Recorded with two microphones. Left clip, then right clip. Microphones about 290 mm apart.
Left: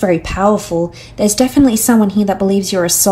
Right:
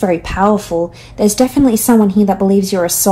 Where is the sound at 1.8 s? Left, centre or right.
Right.